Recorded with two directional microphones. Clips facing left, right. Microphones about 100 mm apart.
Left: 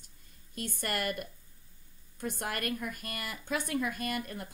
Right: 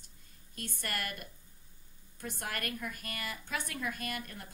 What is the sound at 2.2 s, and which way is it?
A woman's voice, 20° left (ahead or behind).